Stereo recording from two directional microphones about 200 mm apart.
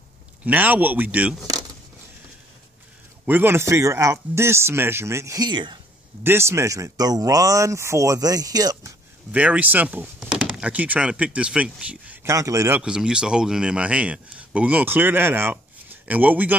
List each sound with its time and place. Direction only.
0.5 s speech: 10° right (ahead or behind)
3.3 s speech: 10° right (ahead or behind)
9.3 s speech: 5° right (ahead or behind)